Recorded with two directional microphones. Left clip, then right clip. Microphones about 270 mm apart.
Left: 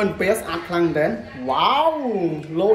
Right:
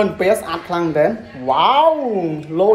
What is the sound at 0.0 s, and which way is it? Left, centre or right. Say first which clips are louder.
A man's voice: right 4 dB; centre.